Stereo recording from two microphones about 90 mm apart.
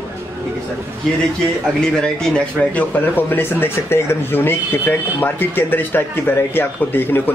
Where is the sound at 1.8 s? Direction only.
5° left (ahead or behind).